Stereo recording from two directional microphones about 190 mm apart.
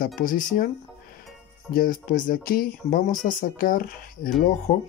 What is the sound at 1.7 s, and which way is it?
Speech, 50° left (ahead or behind).